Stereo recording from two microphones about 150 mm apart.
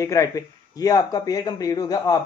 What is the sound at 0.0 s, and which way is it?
A man's voice, 20° left (ahead or behind).